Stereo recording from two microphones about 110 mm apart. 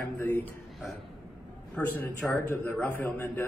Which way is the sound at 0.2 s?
20° left (ahead or behind).